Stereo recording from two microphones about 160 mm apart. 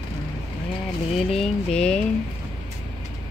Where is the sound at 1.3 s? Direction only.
5° left (ahead or behind).